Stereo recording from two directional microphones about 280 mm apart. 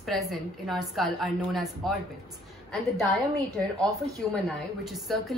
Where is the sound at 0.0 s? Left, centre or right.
Centre.